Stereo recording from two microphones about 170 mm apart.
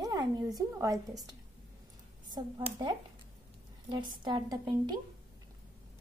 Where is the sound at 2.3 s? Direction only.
25° right (ahead or behind).